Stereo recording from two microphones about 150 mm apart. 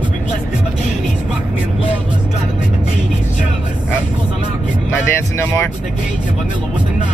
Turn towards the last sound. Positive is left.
turn(degrees=15)  # may be behind; listen again after turning